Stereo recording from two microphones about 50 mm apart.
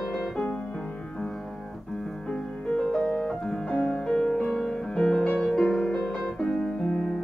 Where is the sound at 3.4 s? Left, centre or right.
Centre.